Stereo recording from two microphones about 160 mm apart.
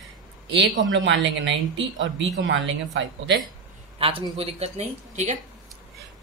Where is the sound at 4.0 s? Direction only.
35° right (ahead or behind).